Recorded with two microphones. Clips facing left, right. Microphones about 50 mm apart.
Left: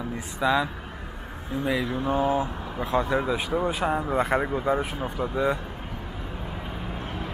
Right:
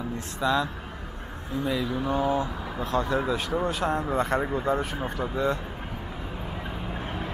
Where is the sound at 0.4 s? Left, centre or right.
Centre.